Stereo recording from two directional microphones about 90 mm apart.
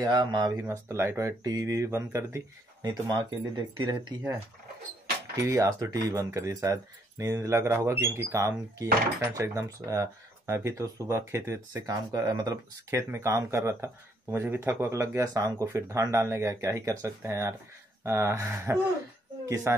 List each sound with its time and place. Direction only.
0.0 s speech: 50° right (ahead or behind)
0.6 s speech: 30° right (ahead or behind)
1.4 s speech: 45° right (ahead or behind)
2.8 s speech: 50° right (ahead or behind)
5.3 s speech: 35° right (ahead or behind)
12.9 s speech: 35° right (ahead or behind)